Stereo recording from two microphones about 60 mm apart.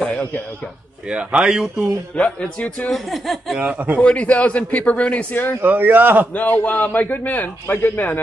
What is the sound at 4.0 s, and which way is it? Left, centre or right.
A man's voice, left.